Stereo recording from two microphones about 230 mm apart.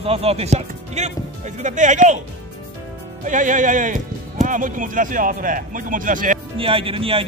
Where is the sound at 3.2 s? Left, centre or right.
Right.